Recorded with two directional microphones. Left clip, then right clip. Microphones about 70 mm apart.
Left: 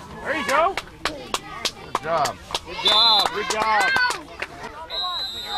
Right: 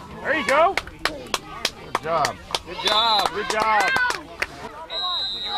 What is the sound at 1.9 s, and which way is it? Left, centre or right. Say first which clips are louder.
Chop: even; centre.